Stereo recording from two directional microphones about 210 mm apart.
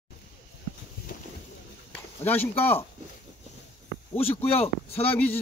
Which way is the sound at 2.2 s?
10° left (ahead or behind).